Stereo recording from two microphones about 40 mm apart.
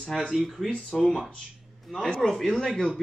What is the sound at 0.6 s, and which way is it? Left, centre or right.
Speech, centre.